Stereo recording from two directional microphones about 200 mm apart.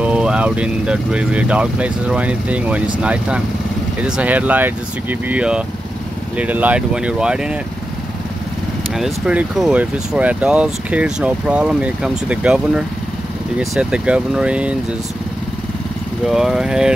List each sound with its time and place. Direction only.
0.0 s speech: 5° right (ahead or behind)
8.9 s speech: 5° right (ahead or behind)
16.3 s speech: centre (ahead or behind)